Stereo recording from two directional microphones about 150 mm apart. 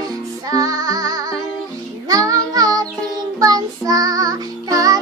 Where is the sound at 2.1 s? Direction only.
25° right (ahead or behind).